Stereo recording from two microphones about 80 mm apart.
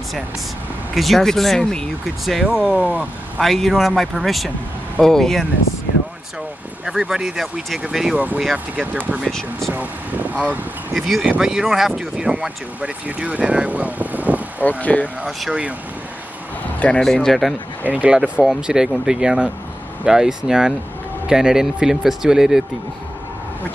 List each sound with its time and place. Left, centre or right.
0.9 s speech: centre
2.4 s speech: centre
3.3 s speech: centre
6.9 s speech: centre
9.2 s speech: centre
9.8 s speech: centre
11.0 s speech: centre
11.2 s speech: centre
14.6 s speech: left
17.0 s speech: centre
17.8 s speech: centre